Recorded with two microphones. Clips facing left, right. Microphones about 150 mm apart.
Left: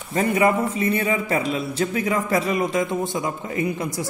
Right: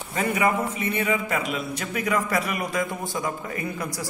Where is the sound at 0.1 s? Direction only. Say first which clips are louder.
Left 4 dB; 35° left (ahead or behind).